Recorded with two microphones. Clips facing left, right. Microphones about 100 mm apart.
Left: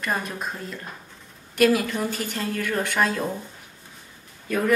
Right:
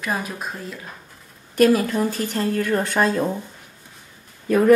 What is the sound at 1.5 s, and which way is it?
A woman's voice, 40° right (ahead or behind).